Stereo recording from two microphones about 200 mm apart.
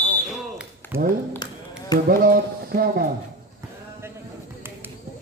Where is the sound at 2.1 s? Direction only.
45° right (ahead or behind).